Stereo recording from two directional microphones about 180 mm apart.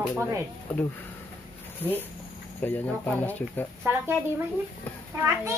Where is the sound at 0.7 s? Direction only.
10° left (ahead or behind).